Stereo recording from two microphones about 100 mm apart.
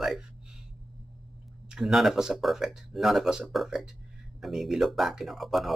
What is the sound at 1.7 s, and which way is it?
Speech, centre (ahead or behind).